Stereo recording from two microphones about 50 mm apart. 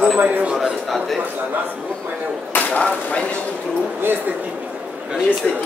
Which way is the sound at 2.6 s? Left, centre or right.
Left.